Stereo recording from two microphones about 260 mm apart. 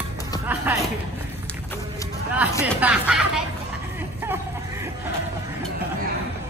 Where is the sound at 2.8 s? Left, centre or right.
Centre.